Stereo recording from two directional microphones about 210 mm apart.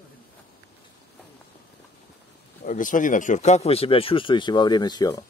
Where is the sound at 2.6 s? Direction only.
40° left (ahead or behind); by 5.2 s 20° left (ahead or behind).